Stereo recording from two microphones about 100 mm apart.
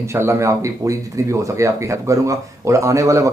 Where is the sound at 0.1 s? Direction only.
25° right (ahead or behind).